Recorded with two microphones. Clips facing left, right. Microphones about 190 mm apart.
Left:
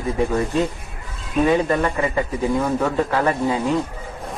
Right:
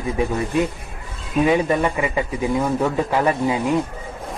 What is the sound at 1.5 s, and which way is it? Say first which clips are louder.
Speech: even; 10° right (ahead or behind).